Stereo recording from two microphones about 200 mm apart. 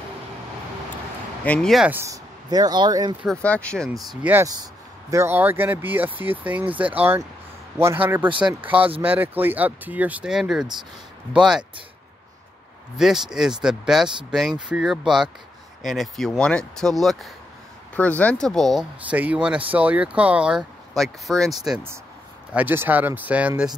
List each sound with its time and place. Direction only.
1.4 s speech: 5° left (ahead or behind); by 3.2 s 20° right (ahead or behind)
3.4 s speech: 5° left (ahead or behind)
4.2 s speech: 10° right (ahead or behind)
12.9 s speech: centre (ahead or behind)